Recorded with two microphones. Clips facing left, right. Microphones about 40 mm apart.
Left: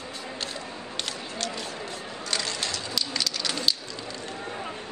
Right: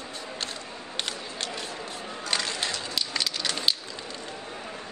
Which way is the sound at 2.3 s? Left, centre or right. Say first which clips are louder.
Right 1 dB; centre.